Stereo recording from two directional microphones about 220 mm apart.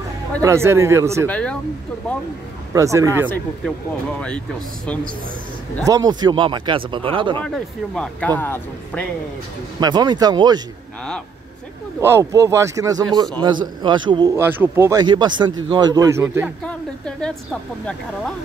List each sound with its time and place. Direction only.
0.4 s speech: 10° right (ahead or behind)
1.2 s speech: 5° left (ahead or behind)
2.7 s speech: 15° right (ahead or behind)
5.9 s a man's voice: 15° right (ahead or behind)
7.4 s speech: 5° left (ahead or behind)
9.8 s a man's voice: 20° right (ahead or behind)
12.0 s a man's voice: 10° right (ahead or behind)
16.6 s speech: 5° left (ahead or behind)